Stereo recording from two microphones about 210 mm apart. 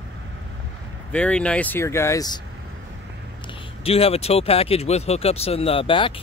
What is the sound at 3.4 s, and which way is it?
Speech, 25° left (ahead or behind).